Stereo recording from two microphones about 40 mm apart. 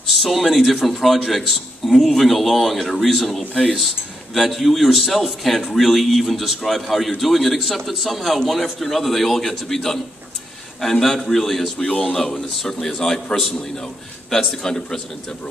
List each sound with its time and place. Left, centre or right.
0.0 s a man's voice: centre
13.4 s a man's voice: centre